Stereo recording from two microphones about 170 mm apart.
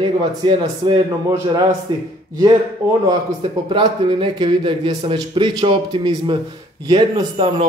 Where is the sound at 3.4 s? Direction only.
30° right (ahead or behind).